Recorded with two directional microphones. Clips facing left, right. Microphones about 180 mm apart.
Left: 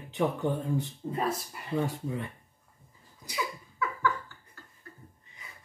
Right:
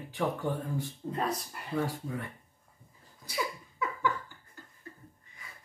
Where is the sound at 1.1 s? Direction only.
5° left (ahead or behind).